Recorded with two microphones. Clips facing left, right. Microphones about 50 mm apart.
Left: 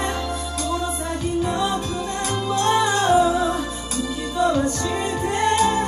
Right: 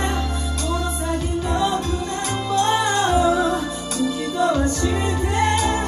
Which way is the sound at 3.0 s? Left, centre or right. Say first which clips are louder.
Even; centre.